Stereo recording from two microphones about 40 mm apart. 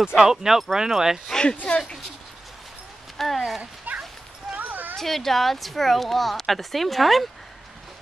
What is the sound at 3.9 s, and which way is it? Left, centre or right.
Dog, right.